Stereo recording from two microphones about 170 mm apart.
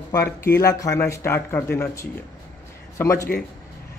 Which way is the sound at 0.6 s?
15° left (ahead or behind).